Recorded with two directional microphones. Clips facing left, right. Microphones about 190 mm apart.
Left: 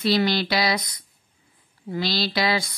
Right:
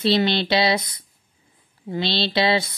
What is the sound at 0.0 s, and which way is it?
Speech, 25° right (ahead or behind).